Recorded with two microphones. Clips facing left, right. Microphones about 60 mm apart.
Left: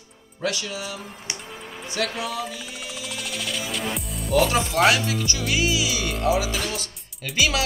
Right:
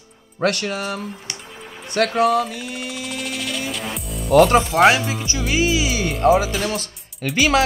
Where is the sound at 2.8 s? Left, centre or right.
Centre.